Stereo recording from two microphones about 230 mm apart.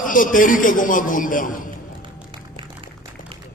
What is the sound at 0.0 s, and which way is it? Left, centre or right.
A man's voice, left.